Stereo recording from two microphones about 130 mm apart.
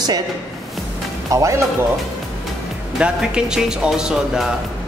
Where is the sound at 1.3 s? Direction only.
25° right (ahead or behind).